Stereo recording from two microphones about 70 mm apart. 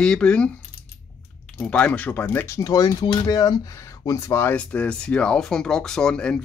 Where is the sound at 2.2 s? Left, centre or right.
Left.